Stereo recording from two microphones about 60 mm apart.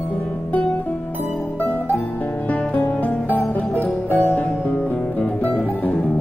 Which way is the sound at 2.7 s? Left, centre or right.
Left.